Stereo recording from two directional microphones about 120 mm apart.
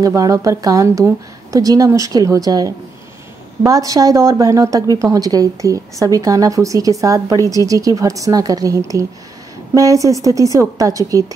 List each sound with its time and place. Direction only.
0.0 s a woman's voice: 30° right (ahead or behind)